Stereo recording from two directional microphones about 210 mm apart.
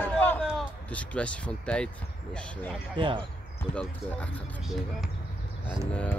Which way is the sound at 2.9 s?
25° right (ahead or behind).